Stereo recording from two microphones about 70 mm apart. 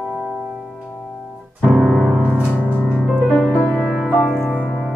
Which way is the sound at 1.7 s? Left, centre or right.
Centre.